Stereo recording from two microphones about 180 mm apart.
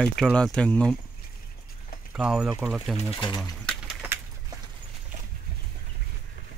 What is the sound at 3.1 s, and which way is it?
Speech, 25° left (ahead or behind).